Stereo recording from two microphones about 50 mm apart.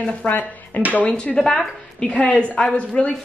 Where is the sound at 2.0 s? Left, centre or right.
Left.